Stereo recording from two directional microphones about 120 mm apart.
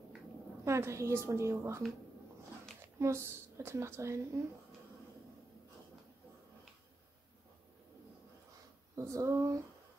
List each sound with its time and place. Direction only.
0.7 s a woman's voice: 25° right (ahead or behind)
3.0 s a woman's voice: 20° right (ahead or behind)
8.9 s a woman's voice: 25° right (ahead or behind)